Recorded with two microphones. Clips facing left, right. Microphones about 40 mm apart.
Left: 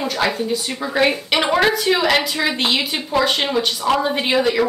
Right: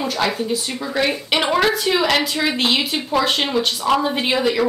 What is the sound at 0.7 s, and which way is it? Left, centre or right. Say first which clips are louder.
A woman's voice: left 5 dB; centre.